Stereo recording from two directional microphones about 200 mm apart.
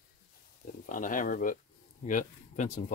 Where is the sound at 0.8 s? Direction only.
40° left (ahead or behind).